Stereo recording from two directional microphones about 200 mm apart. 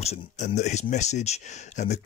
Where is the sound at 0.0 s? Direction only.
35° left (ahead or behind).